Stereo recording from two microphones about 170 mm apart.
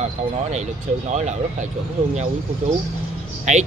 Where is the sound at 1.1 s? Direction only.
45° right (ahead or behind).